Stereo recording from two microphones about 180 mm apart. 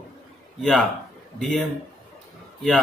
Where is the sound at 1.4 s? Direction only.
Centre (ahead or behind).